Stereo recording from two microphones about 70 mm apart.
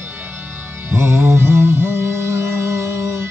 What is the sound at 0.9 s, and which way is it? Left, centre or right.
Music, right.